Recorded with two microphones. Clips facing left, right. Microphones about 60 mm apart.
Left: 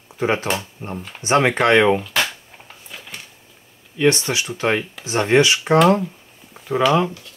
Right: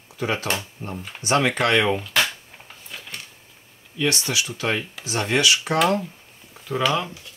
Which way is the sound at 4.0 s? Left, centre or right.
Left.